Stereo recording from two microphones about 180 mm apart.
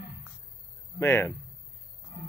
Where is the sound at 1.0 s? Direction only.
15° left (ahead or behind).